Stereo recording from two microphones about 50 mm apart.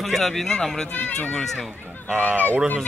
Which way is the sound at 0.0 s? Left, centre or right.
Centre.